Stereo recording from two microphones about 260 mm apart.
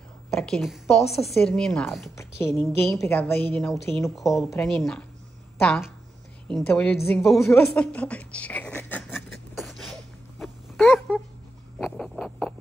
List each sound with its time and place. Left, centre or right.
0.3 s a woman's voice: centre
7.3 s a woman's voice: centre
7.6 s a sound: centre